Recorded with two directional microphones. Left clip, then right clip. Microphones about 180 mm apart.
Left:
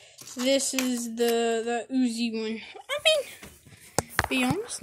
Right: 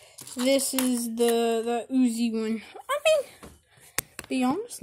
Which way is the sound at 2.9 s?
10° right (ahead or behind).